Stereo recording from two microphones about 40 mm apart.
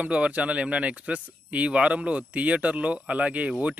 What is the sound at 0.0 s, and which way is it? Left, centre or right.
Speech, right.